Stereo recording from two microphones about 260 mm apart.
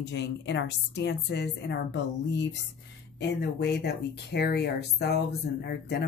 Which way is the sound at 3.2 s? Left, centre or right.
Left.